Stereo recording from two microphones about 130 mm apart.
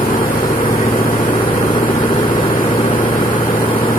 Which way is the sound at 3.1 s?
40° left (ahead or behind).